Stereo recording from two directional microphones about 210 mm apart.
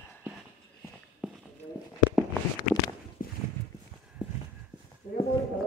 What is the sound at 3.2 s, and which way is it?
Clip-clop, 40° left (ahead or behind).